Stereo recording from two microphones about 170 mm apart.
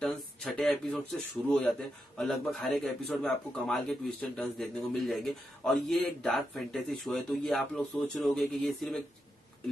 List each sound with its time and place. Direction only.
0.0 s a man's voice: 5° left (ahead or behind)